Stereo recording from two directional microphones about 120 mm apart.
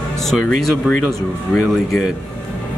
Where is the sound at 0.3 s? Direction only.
Centre (ahead or behind).